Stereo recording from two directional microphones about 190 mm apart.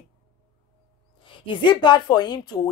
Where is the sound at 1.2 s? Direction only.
25° left (ahead or behind).